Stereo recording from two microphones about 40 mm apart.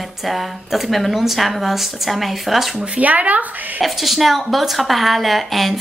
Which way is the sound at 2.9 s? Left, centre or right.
Right.